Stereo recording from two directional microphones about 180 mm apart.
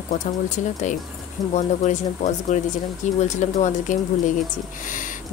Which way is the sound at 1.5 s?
40° left (ahead or behind).